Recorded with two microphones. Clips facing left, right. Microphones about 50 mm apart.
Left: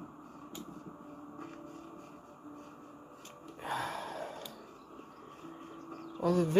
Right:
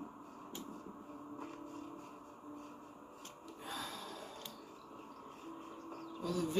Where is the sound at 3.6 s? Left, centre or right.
Left.